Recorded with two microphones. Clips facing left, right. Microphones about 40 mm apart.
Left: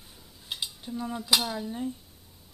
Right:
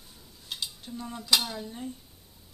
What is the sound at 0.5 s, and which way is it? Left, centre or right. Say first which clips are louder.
Cutlery: left 1 dB; centre.